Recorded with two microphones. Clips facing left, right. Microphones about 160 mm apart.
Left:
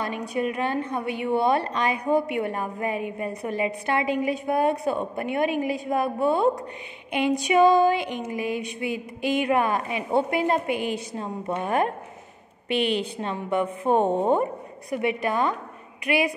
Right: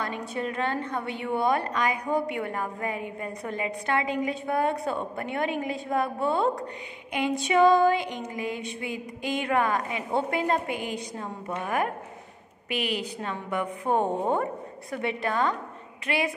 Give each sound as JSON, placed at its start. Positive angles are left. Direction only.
{"t": 0.4, "sound": "a woman's voice", "side_deg": 15}
{"t": 7.1, "sound": "a sound", "side_deg": 20}
{"t": 7.4, "sound": "a woman's voice", "side_deg": 20}
{"t": 8.9, "sound": "a woman's voice", "side_deg": -20}
{"t": 9.4, "sound": "a woman's voice", "side_deg": 20}